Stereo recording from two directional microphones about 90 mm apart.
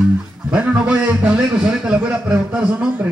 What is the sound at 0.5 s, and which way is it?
A man's voice, 10° right (ahead or behind).